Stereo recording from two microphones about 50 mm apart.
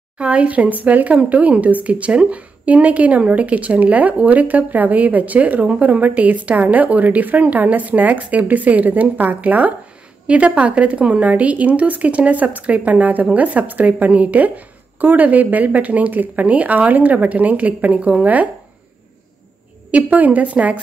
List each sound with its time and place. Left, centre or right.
0.2 s speech: right
19.9 s speech: right